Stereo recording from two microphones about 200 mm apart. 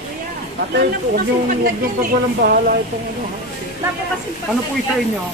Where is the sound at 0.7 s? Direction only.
50° right (ahead or behind).